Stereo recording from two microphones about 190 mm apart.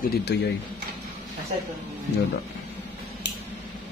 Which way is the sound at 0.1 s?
60° left (ahead or behind).